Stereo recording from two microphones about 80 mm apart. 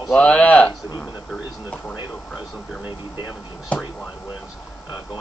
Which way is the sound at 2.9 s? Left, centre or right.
Left.